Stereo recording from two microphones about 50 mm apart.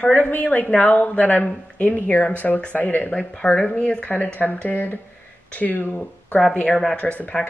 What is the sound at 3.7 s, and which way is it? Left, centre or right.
A woman's voice, left.